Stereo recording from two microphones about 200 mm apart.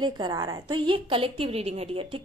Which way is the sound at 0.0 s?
20° right (ahead or behind).